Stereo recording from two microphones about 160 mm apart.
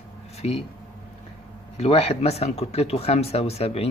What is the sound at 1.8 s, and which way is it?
Speech, 40° left (ahead or behind).